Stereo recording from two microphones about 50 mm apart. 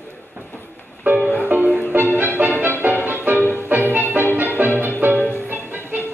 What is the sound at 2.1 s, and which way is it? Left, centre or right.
Music, right.